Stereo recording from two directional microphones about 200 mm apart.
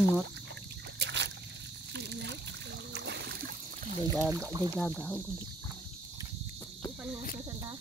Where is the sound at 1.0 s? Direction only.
60° right (ahead or behind).